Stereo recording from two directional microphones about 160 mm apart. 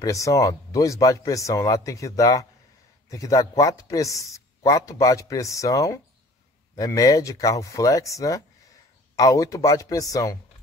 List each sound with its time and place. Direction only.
0.0 s a man's voice: 20° left (ahead or behind)